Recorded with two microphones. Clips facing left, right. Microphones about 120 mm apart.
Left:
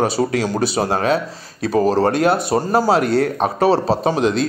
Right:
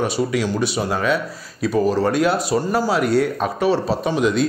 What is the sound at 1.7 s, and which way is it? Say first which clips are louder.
Speech: left 3 dB; 35° left (ahead or behind).